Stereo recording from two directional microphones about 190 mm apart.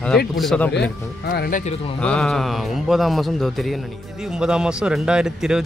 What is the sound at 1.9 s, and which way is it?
A man's voice, 5° left (ahead or behind).